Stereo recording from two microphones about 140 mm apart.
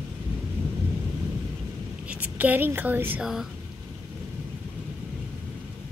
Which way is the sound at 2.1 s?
10° right (ahead or behind).